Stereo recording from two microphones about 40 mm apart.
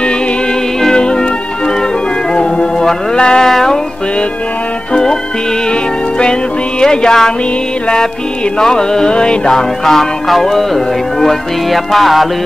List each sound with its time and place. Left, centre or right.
0.9 s music: left
2.3 s music: centre
6.8 s music: centre
8.5 s music: centre
9.5 s speech: centre